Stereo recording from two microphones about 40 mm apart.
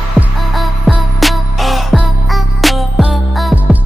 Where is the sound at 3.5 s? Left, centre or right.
Right.